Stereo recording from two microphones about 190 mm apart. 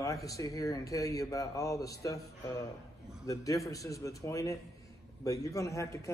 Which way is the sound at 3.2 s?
20° left (ahead or behind).